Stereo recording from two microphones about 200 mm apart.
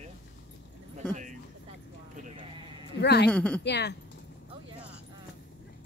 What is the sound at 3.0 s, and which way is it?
Speech, 55° left (ahead or behind).